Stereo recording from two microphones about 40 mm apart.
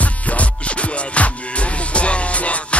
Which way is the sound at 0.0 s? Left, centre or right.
Left.